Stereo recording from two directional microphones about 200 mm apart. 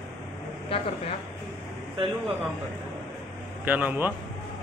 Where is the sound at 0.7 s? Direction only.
30° left (ahead or behind).